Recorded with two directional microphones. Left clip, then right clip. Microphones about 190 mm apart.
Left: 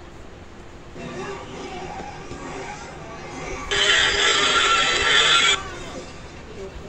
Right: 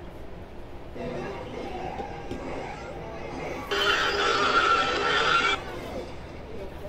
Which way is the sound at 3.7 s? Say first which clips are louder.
Left 6 dB; 5° left (ahead or behind).